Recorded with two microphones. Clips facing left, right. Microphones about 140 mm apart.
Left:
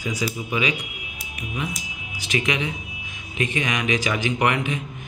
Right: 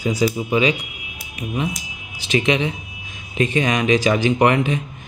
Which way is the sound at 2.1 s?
30° right (ahead or behind).